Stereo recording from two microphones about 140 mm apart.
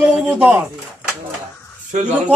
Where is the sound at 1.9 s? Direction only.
60° right (ahead or behind).